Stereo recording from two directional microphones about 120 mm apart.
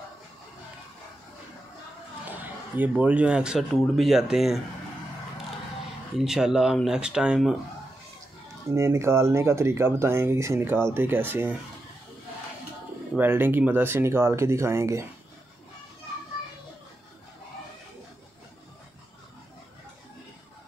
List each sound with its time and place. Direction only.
2.2 s a sound: 15° right (ahead or behind)
2.9 s speech: 10° right (ahead or behind)
6.1 s speech: 5° right (ahead or behind)
8.7 s speech: 25° right (ahead or behind)
13.2 s speech: 15° right (ahead or behind)